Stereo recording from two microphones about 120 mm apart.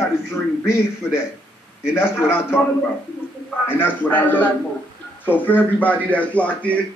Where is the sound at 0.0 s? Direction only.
25° left (ahead or behind).